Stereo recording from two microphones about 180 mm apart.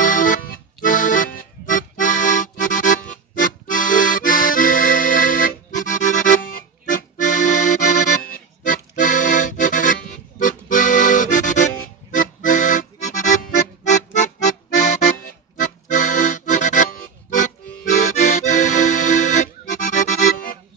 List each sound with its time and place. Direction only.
0.0 s music: 45° left (ahead or behind)
0.8 s accordion: 45° left (ahead or behind)
13.8 s music: 40° left (ahead or behind)
15.6 s accordion: 45° left (ahead or behind)